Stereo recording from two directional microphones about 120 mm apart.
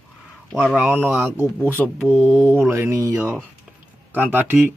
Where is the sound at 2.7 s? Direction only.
25° right (ahead or behind).